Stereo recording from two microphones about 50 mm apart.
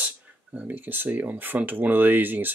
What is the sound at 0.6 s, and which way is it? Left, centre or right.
Speech, right.